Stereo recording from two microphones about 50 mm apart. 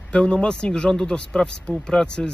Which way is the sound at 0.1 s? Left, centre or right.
Centre.